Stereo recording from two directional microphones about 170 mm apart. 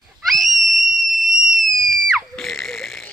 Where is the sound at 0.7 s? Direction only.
Centre (ahead or behind).